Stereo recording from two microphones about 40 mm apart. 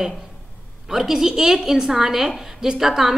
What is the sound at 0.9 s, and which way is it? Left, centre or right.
A woman's voice, centre.